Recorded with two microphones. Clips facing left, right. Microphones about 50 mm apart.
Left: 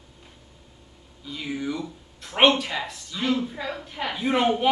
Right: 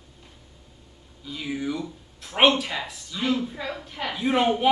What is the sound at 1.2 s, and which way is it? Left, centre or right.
Speech, centre.